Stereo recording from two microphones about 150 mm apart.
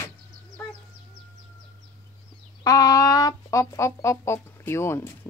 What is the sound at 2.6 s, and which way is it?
Speech, 25° left (ahead or behind).